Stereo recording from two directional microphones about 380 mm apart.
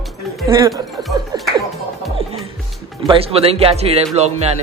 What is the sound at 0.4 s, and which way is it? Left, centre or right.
Chuckle, centre.